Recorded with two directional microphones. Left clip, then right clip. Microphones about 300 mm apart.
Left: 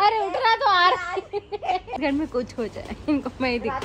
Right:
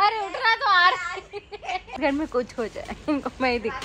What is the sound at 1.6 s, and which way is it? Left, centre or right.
Speech, left.